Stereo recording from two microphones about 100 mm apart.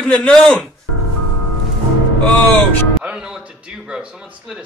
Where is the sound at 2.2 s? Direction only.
20° left (ahead or behind).